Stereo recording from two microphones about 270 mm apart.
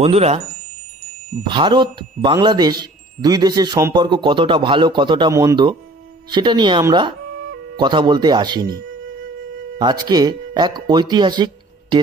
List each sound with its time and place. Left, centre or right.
0.0 s speech: right
1.5 s a man's voice: centre
9.8 s speech: centre